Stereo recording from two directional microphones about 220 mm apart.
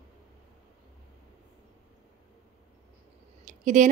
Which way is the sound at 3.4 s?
35° right (ahead or behind).